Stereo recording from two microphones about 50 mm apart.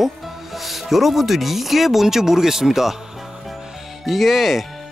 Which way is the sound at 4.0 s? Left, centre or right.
Centre.